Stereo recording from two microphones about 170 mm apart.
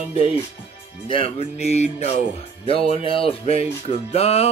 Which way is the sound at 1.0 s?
30° left (ahead or behind).